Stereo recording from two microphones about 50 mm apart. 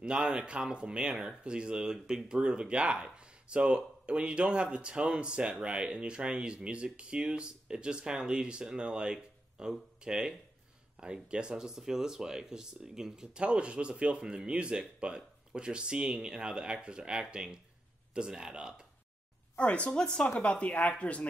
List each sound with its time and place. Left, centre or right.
0.0 s speech: centre
19.5 s speech: left